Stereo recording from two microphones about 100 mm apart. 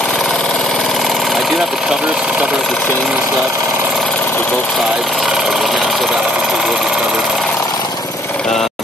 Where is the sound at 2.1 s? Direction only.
5° right (ahead or behind).